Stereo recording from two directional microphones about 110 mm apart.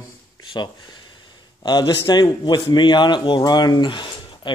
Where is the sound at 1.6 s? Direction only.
40° left (ahead or behind).